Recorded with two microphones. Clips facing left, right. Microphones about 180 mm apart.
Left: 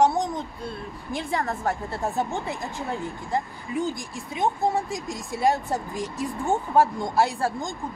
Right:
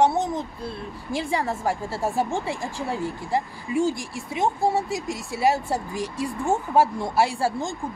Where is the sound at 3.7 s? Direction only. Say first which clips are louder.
Right 4 dB; 90° right.